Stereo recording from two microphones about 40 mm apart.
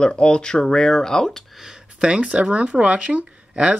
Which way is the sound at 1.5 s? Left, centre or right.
Centre.